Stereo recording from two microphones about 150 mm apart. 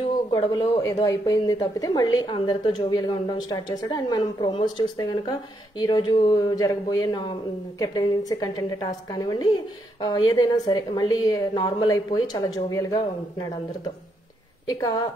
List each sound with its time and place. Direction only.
0.3 s a woman's voice: 30° left (ahead or behind)
14.7 s a woman's voice: 25° left (ahead or behind)